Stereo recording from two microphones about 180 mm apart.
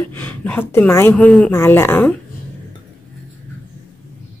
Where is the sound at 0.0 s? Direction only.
10° left (ahead or behind).